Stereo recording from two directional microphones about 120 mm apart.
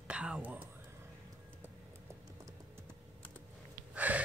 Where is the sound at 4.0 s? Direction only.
15° right (ahead or behind).